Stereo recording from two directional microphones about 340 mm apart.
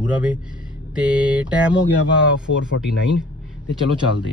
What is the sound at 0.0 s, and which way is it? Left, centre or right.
Speech, centre.